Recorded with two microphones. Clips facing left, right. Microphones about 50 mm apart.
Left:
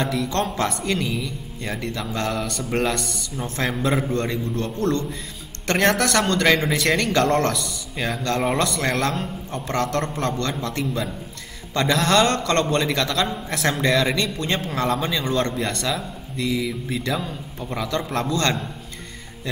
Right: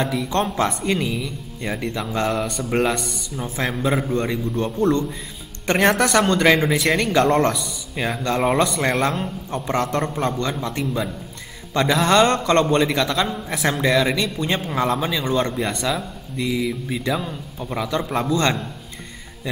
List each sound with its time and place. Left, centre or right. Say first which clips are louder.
0.0 s a man's voice: right 1 dB; centre
4.1 s a man's voice: right 2 dB; centre